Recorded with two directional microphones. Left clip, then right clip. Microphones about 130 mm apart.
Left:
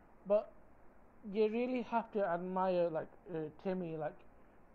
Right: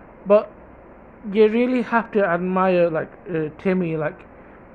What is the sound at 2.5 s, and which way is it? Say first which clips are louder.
Speech: right 16 dB; 45° right (ahead or behind).